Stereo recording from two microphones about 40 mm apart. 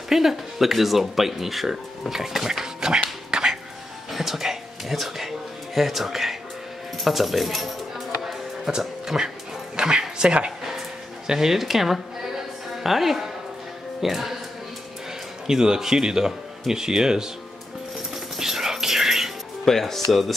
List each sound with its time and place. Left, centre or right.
0.1 s speech: centre
3.3 s music: centre
5.8 s speech: centre
8.6 s speech: centre
11.2 s a sound: centre
14.0 s speech: centre
15.4 s speech: centre
18.1 s music: centre
19.6 s speech: centre